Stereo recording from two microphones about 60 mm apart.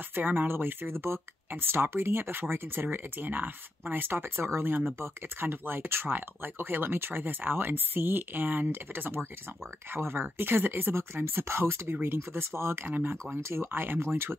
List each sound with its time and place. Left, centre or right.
0.1 s speech: right
12.8 s speech: right
13.4 s speech: right